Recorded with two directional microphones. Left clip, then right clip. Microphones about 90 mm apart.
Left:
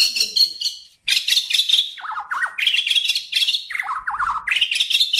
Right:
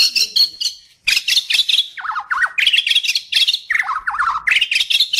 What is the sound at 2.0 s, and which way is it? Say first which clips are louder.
Bird: right 5 dB; 20° right (ahead or behind).